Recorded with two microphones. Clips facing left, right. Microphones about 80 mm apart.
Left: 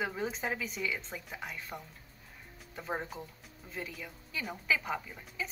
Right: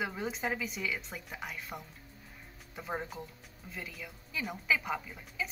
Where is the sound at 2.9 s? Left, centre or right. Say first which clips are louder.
Left 1 dB; centre.